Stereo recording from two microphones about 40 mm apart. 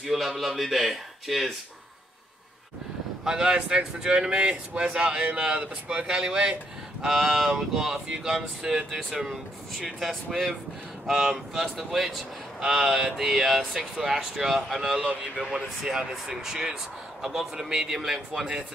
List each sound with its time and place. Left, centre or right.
0.0 s speech: centre
3.3 s speech: centre
15.5 s speech: centre